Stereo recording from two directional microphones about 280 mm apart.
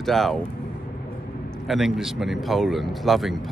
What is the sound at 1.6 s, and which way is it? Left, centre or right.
Speech, centre.